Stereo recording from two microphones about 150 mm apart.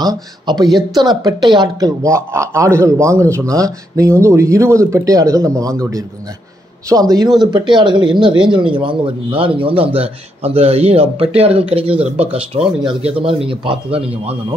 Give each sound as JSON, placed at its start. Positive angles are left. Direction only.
{"t": 0.0, "sound": "a man's voice", "side_deg": -25}